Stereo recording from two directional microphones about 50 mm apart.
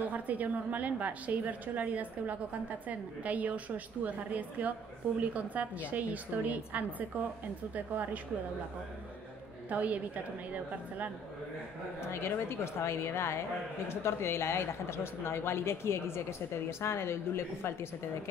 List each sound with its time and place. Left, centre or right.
0.0 s a woman's voice: right
9.7 s a woman's voice: right
12.0 s speech: left